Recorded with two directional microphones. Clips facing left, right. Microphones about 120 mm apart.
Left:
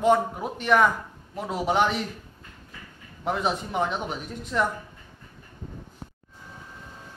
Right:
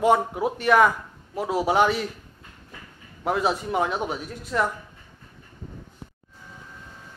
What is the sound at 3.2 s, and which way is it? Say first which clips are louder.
Speech: right 3 dB; 5° right (ahead or behind).